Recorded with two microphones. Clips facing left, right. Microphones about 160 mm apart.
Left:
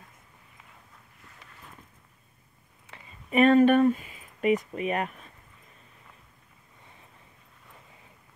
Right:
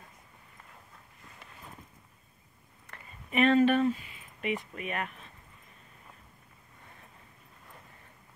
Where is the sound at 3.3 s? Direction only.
45° left (ahead or behind).